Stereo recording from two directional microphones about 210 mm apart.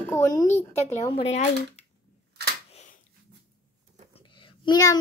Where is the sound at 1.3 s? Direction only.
35° left (ahead or behind).